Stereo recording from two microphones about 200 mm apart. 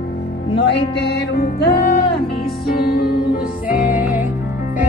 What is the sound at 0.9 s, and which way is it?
Music, 60° left (ahead or behind).